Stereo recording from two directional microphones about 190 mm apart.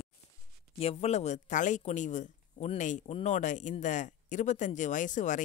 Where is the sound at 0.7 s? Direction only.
35° left (ahead or behind).